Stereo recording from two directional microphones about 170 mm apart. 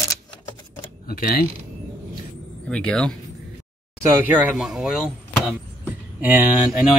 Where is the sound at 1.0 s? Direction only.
60° left (ahead or behind).